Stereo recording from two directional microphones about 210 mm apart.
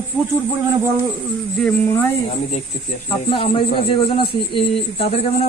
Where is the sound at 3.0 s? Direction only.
25° left (ahead or behind).